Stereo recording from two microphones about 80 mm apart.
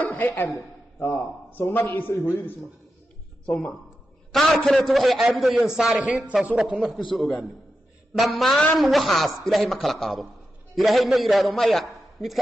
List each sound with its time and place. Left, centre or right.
0.0 s a sound: left
0.9 s a man's voice: left
3.4 s a man's voice: centre
7.2 s a man's voice: centre